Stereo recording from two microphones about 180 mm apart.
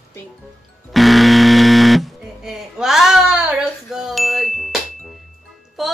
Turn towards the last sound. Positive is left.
turn(degrees=0)  # may be behind; listen again after turning